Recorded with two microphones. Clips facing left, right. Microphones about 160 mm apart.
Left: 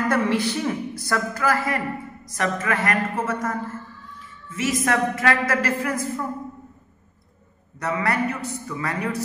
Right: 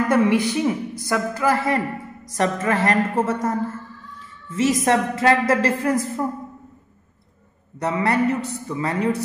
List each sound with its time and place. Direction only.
0.1 s speech: 15° right (ahead or behind); by 3.5 s 35° right (ahead or behind)
4.6 s speech: 30° right (ahead or behind)
7.8 s a man's voice: 25° right (ahead or behind)